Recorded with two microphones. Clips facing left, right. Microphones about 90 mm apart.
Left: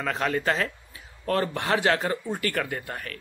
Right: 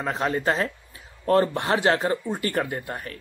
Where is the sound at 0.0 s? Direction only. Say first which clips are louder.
Right 1 dB; 25° right (ahead or behind).